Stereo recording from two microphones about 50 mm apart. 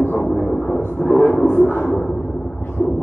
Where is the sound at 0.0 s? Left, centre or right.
Left.